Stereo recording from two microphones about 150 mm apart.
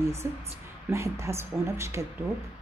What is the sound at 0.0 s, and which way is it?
A woman's voice, 20° right (ahead or behind).